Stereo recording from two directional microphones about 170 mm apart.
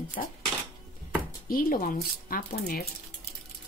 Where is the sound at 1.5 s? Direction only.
55° left (ahead or behind).